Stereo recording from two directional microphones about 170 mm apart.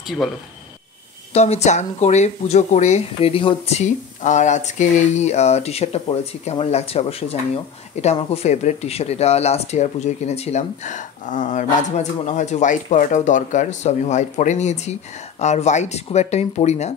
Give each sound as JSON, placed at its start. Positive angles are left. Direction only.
{"t": 1.3, "sound": "speech", "side_deg": 40}